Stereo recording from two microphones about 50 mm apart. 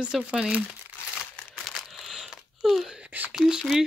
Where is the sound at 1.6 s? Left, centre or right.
Centre.